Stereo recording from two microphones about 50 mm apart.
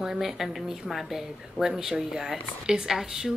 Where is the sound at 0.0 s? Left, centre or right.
Centre.